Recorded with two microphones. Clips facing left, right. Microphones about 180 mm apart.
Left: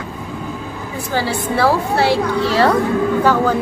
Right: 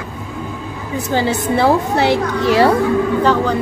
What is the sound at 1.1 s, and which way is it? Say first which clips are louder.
A woman's voice: right 3 dB; 20° right (ahead or behind).